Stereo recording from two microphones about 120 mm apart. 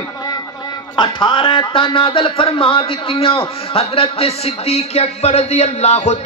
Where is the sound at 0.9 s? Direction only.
45° left (ahead or behind).